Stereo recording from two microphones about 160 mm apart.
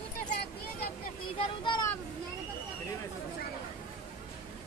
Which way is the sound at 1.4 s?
30° left (ahead or behind).